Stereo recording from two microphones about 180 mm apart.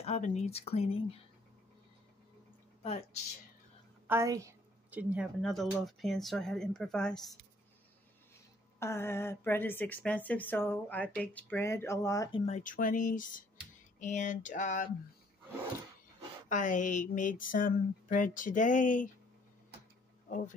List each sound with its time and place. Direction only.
0.0 s speech: 40° left (ahead or behind)
4.1 s a woman's voice: 15° right (ahead or behind); by 7.3 s 5° left (ahead or behind)
8.7 s speech: 15° left (ahead or behind)
12.3 s speech: 35° left (ahead or behind)
16.4 s speech: 45° left (ahead or behind)
20.2 s speech: 45° left (ahead or behind)